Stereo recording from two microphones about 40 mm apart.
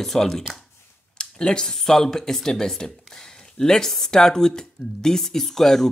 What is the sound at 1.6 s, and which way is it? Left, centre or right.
Speech, centre.